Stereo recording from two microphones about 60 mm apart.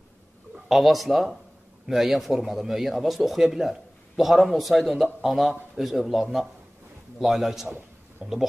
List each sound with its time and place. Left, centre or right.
0.7 s a man's voice: centre
8.2 s speech: centre